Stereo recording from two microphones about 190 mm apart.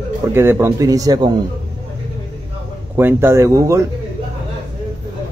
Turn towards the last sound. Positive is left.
turn(degrees=-15)  # may be behind; listen again after turning